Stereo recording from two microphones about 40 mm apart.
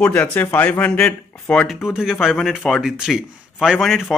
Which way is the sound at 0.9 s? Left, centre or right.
Left.